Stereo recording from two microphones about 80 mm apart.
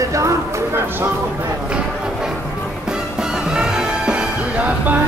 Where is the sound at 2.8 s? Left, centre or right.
Centre.